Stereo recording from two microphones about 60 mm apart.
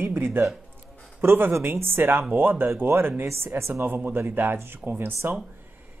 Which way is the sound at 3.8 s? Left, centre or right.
Right.